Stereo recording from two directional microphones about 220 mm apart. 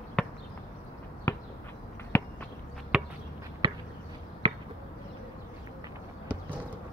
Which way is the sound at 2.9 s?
5° right (ahead or behind).